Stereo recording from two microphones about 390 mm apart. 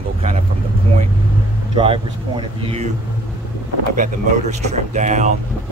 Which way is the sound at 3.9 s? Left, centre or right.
Centre.